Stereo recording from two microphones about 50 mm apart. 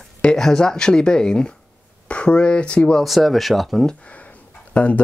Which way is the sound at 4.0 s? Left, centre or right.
Left.